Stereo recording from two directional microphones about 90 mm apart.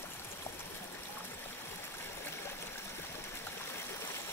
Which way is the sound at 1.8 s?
25° left (ahead or behind).